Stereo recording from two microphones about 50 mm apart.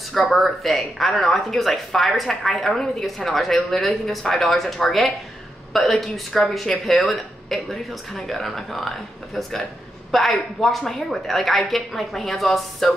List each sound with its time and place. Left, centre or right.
0.3 s a woman's voice: centre